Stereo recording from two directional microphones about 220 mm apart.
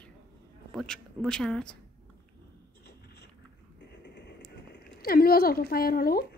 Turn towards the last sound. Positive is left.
turn(degrees=45)  # may be behind; listen again after turning